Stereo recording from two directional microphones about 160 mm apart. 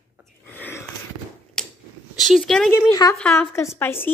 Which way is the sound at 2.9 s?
25° left (ahead or behind).